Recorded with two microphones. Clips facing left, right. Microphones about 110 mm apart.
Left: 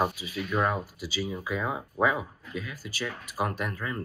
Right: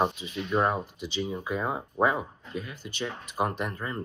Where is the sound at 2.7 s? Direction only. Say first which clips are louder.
Even; 5° left (ahead or behind).